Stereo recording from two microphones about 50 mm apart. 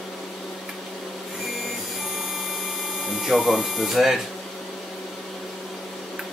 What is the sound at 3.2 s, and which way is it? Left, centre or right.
Speech, centre.